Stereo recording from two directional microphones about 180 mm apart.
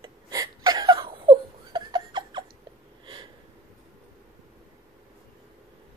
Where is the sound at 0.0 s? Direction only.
20° right (ahead or behind).